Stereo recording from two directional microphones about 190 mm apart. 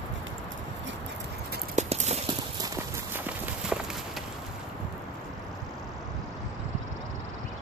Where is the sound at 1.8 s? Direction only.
35° right (ahead or behind).